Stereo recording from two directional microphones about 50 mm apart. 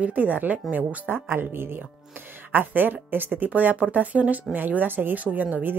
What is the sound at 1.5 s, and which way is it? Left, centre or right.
Speech, right.